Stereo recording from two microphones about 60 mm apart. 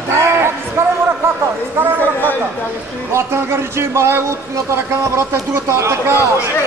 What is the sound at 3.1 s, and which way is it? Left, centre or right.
A man's voice, right.